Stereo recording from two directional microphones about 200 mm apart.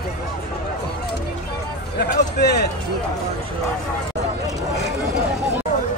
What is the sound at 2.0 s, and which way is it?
Speech, 55° left (ahead or behind).